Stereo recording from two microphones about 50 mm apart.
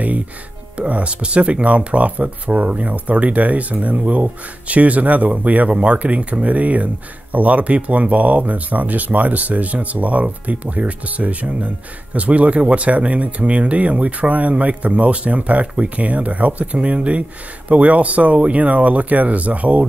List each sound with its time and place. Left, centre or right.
0.7 s speech: right